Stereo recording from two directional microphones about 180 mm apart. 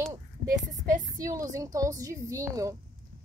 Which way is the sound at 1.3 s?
20° right (ahead or behind).